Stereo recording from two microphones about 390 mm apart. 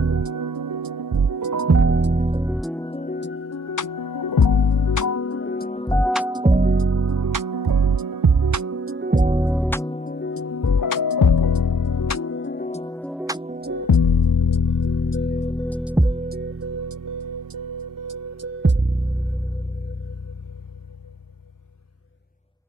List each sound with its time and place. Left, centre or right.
0.0 s music: right; by 2.5 s centre
2.5 s music: centre
6.4 s music: right
9.4 s music: centre
9.7 s music: centre
13.2 s music: centre
13.6 s music: right
13.8 s music: left
15.3 s music: centre
15.8 s music: centre; by 18.8 s right